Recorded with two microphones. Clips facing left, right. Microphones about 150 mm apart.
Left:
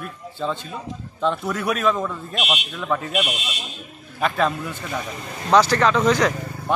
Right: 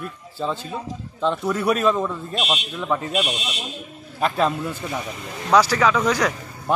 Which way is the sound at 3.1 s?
30° right (ahead or behind).